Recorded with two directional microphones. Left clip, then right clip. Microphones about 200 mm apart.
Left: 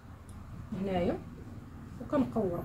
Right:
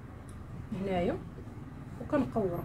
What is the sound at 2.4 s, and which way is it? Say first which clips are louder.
Speech: right 1 dB; 10° right (ahead or behind).